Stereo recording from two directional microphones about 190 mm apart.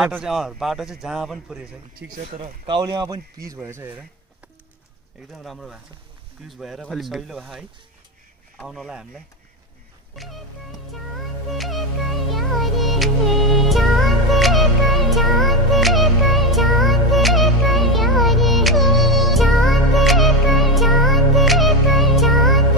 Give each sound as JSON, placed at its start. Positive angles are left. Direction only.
{"t": 0.0, "sound": "a man's voice", "side_deg": -5}
{"t": 2.3, "sound": "speech", "side_deg": -30}
{"t": 5.3, "sound": "a man's voice", "side_deg": 0}
{"t": 8.6, "sound": "a man's voice", "side_deg": 0}
{"t": 10.9, "sound": "music", "side_deg": 0}